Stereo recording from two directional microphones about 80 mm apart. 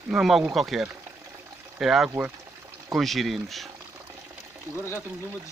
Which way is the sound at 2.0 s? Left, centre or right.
Right.